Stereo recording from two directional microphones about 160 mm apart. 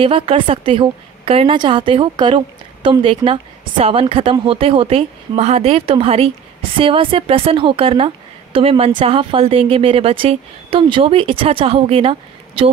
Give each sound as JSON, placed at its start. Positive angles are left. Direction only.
{"t": 0.0, "sound": "a woman's voice", "side_deg": -35}